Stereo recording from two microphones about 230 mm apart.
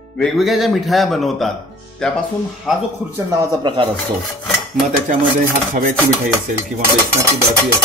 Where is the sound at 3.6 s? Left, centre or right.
Centre.